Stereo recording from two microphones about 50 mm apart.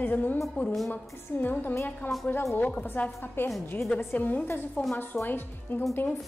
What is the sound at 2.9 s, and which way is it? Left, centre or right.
Speech, left.